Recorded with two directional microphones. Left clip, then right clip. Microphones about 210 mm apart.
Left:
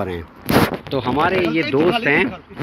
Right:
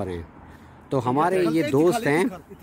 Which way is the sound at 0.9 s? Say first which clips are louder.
Left 4 dB; 20° right (ahead or behind).